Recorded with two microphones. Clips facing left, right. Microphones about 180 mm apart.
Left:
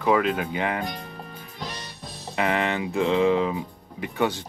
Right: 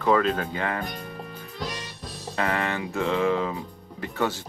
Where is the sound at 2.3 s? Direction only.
20° left (ahead or behind).